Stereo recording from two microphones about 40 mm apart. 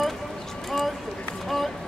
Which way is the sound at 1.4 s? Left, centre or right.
Centre.